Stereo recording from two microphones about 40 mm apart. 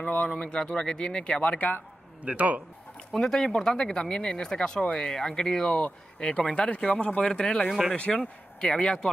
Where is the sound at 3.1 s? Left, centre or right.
Centre.